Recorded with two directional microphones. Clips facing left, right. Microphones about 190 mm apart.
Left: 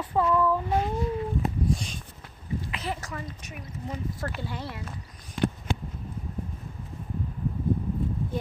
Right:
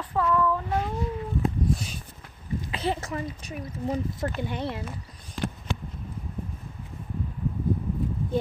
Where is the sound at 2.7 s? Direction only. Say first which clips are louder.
Right 5 dB; 25° right (ahead or behind).